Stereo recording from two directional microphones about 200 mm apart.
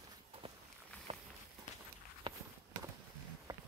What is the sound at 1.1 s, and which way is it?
Walk, 30° right (ahead or behind).